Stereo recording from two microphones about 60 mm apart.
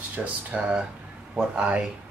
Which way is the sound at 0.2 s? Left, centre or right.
Right.